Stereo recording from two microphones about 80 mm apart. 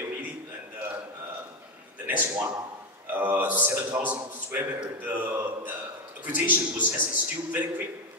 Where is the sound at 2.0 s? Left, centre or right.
Centre.